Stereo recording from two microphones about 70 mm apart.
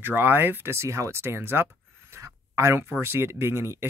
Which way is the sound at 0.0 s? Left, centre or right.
Right.